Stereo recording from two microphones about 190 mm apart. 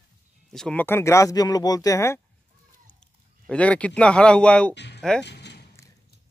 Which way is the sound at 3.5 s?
5° left (ahead or behind).